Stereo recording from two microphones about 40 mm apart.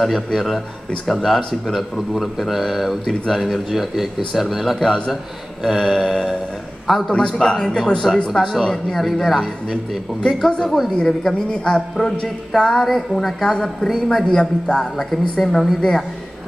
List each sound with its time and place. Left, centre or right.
0.0 s a man's voice: centre
4.7 s a woman's voice: centre
5.7 s a man's voice: centre
7.1 s a woman's voice: centre
12.7 s a man's voice: centre
13.5 s a woman's voice: centre